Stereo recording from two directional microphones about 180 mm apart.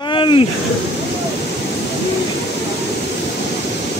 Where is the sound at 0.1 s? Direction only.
25° left (ahead or behind).